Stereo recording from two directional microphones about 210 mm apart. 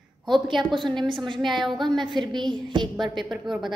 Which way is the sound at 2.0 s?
20° right (ahead or behind).